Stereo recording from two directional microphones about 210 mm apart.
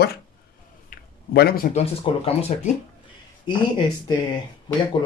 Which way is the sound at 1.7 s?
30° left (ahead or behind).